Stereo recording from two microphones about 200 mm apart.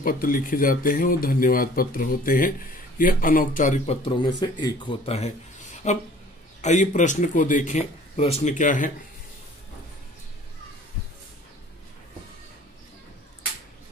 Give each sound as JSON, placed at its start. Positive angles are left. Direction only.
{"t": 0.0, "sound": "speech", "side_deg": 45}